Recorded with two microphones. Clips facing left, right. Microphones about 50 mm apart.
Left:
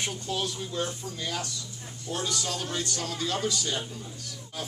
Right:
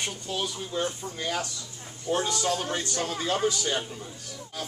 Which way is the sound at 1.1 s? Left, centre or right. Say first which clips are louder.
Right 3 dB; right.